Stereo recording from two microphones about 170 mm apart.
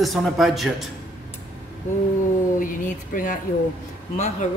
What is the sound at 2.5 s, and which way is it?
Speech, 55° left (ahead or behind).